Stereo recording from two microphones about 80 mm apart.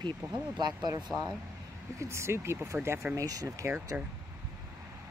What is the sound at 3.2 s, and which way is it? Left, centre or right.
Speech, right.